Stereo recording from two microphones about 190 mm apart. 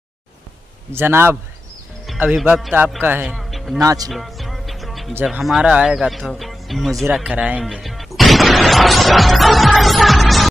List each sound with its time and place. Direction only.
0.9 s speech: 10° right (ahead or behind)
3.3 s music: centre (ahead or behind)
3.8 s speech: 20° right (ahead or behind)
4.1 s music: centre (ahead or behind)
5.2 s speech: centre (ahead or behind)